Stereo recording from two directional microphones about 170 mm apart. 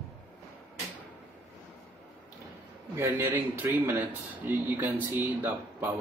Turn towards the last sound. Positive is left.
turn(degrees=-10)  # may be behind; listen again after turning